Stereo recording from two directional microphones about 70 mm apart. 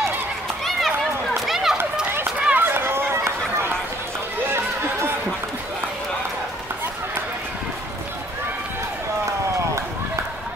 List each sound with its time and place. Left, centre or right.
0.7 s run: centre
2.5 s run: right
4.5 s chatter: right